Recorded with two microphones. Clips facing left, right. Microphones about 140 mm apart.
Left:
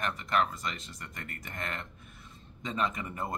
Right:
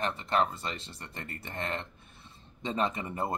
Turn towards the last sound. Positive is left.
turn(degrees=-30)  # may be behind; listen again after turning